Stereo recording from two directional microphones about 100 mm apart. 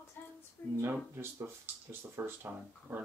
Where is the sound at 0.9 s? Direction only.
25° right (ahead or behind).